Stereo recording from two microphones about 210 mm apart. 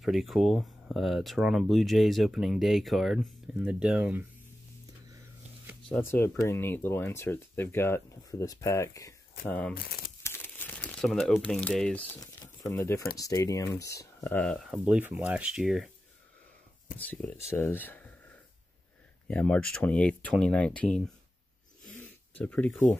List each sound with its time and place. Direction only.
0.0 s speech: centre (ahead or behind)
5.9 s speech: 10° left (ahead or behind)
9.8 s speech: 45° left (ahead or behind)
10.2 s crumpling: 10° left (ahead or behind)
12.2 s speech: 15° left (ahead or behind); by 15.9 s centre (ahead or behind)
17.0 s speech: 5° left (ahead or behind)
19.2 s speech: 5° left (ahead or behind)
21.9 s a sound: 10° left (ahead or behind)